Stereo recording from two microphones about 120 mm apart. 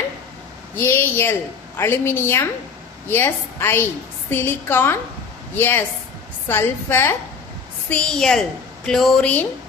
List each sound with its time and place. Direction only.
0.7 s a woman's voice: 15° left (ahead or behind)
7.9 s a woman's voice: 5° left (ahead or behind)